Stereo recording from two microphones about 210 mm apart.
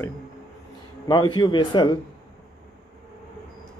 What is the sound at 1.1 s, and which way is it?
Speech, 20° left (ahead or behind).